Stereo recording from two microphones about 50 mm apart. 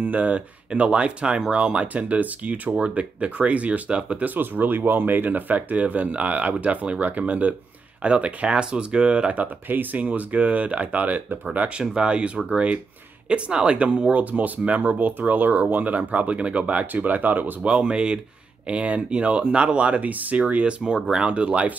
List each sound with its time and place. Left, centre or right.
0.0 s speech: right
4.3 s speech: right
11.8 s speech: centre
14.1 s speech: right
17.6 s speech: right
20.8 s speech: centre